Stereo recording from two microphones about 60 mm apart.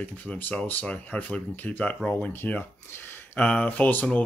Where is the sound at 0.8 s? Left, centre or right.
Centre.